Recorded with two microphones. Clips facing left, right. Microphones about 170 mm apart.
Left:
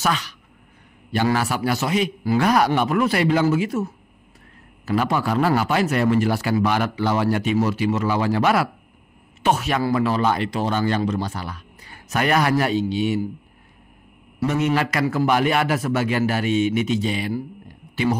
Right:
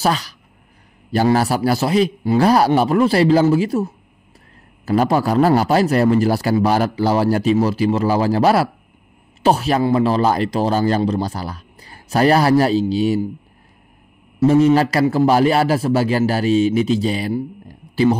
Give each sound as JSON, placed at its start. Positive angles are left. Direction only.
{"t": 0.0, "sound": "speech", "side_deg": -35}
{"t": 14.4, "sound": "speech", "side_deg": -30}
{"t": 17.6, "sound": "a sound", "side_deg": -35}